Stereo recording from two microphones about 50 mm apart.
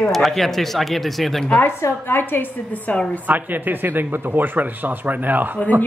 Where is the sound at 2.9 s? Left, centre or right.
Left.